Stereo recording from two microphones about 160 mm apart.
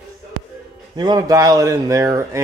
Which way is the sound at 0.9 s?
25° right (ahead or behind).